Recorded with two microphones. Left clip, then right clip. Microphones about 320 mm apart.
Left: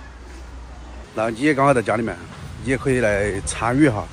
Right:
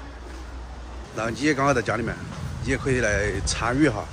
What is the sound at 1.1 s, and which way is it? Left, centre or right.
Speech, centre.